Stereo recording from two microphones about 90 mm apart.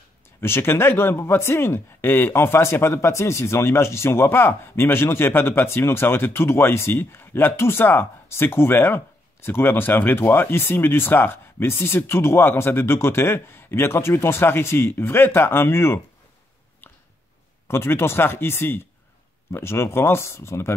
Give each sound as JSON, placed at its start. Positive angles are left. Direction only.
{"t": 0.4, "sound": "speech", "side_deg": 25}
{"t": 17.6, "sound": "speech", "side_deg": 25}